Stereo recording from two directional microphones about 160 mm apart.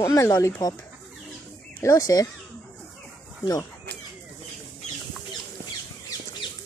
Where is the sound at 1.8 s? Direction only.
20° left (ahead or behind).